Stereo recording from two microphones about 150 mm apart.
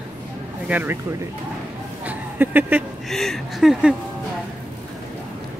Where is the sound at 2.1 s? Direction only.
10° right (ahead or behind).